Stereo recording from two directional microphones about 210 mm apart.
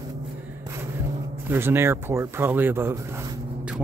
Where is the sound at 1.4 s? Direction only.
10° right (ahead or behind).